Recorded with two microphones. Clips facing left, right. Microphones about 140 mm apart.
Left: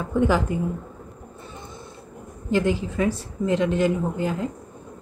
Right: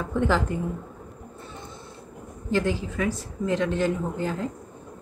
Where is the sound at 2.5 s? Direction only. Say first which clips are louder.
Left 3 dB; 15° left (ahead or behind).